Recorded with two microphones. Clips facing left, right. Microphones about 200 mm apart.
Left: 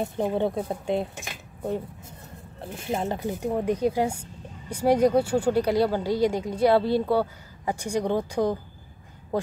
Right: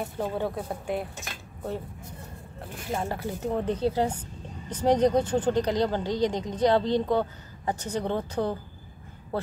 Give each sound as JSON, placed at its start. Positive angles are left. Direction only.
{"t": 0.0, "sound": "speech", "side_deg": 20}
{"t": 2.8, "sound": "speech", "side_deg": 25}